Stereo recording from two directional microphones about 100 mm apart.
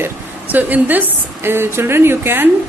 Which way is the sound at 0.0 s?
15° right (ahead or behind).